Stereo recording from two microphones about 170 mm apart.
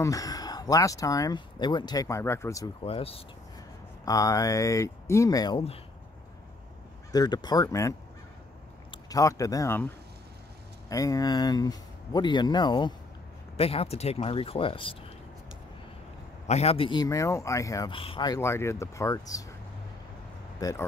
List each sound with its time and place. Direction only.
0.0 s speech: 20° left (ahead or behind)
2.8 s speech: 35° left (ahead or behind)
4.0 s speech: 20° left (ahead or behind)
7.1 s speech: 25° left (ahead or behind)
8.9 s speech: 20° left (ahead or behind)
10.9 s speech: 20° left (ahead or behind)
16.4 s speech: 40° left (ahead or behind); by 17.9 s 20° left (ahead or behind)
17.9 s speech: 30° left (ahead or behind)
20.6 s speech: 20° left (ahead or behind)